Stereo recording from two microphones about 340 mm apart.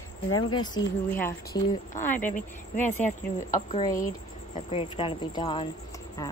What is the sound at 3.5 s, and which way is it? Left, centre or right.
Speech, centre.